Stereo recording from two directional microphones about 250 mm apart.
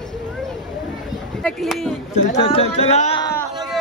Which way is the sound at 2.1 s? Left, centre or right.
Left.